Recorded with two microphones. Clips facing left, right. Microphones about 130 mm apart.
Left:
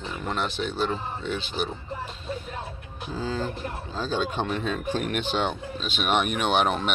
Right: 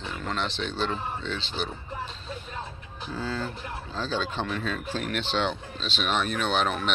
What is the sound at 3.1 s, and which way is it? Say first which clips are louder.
Speech: left 3 dB; 15° left (ahead or behind).